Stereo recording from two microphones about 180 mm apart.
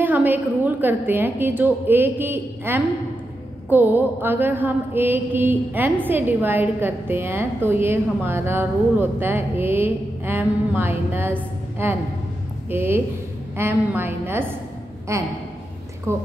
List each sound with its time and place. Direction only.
0.0 s mantra: 10° right (ahead or behind)